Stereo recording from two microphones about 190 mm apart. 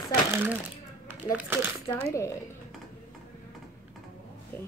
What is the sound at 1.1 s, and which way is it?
Speech, 10° right (ahead or behind).